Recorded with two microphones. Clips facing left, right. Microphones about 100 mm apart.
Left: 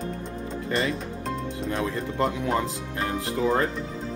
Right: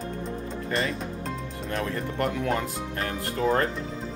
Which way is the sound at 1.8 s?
15° left (ahead or behind).